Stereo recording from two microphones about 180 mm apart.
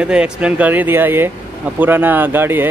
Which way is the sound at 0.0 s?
5° right (ahead or behind).